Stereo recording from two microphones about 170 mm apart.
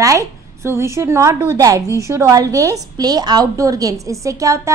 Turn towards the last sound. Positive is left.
turn(degrees=-20)  # may be behind; listen again after turning